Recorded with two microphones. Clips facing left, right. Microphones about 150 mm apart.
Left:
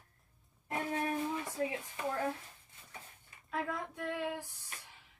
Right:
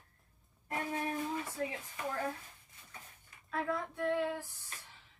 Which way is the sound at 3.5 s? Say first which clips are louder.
Right 2 dB; 15° left (ahead or behind).